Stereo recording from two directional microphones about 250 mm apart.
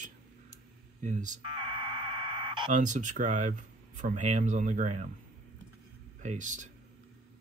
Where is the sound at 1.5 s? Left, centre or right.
Centre.